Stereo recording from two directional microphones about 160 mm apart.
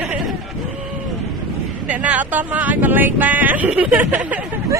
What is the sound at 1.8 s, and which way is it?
Speech, 10° right (ahead or behind).